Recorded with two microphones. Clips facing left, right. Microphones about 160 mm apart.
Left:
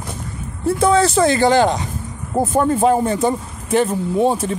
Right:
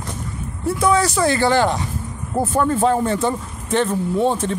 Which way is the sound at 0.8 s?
25° left (ahead or behind).